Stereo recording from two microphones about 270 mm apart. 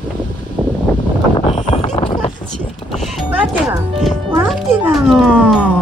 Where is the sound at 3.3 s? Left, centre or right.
Centre.